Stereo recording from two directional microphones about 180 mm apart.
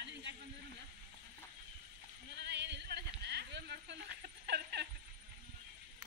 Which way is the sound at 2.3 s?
70° right (ahead or behind).